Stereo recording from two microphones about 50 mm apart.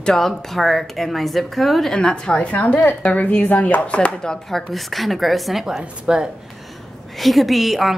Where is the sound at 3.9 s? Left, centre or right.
Left.